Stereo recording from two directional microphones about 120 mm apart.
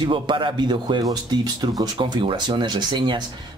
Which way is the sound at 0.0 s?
40° right (ahead or behind).